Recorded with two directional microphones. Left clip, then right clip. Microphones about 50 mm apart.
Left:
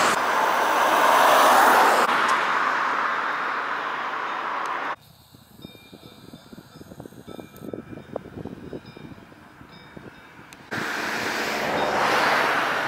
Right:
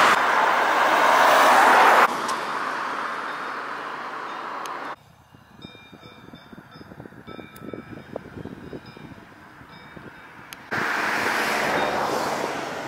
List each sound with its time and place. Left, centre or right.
0.2 s vehicle: centre
1.8 s vehicle: right
2.2 s vehicle: centre
10.7 s vehicle: right
12.0 s waves: left